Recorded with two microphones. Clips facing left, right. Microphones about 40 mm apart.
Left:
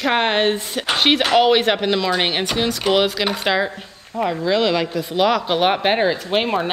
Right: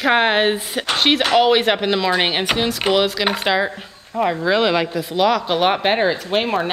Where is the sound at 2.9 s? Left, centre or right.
Centre.